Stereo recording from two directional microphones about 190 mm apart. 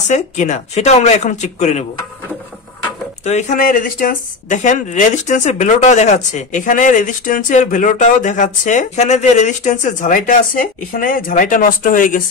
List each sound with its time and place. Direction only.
0.1 s speech: 40° left (ahead or behind)
3.3 s speech: 35° left (ahead or behind)